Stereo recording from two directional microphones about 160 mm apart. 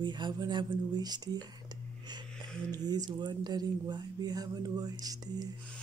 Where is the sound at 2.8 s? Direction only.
25° right (ahead or behind).